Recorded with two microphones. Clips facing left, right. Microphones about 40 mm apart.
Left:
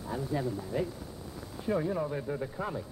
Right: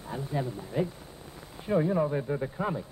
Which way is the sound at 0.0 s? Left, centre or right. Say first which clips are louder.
Even; right.